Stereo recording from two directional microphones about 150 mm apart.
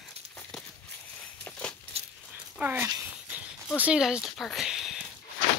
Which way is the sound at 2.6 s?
15° right (ahead or behind).